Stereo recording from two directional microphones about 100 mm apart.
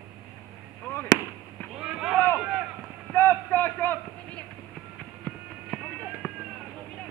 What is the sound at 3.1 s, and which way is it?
Run, 20° left (ahead or behind).